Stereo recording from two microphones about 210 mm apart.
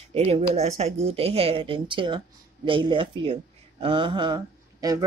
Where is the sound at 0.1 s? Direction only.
30° right (ahead or behind).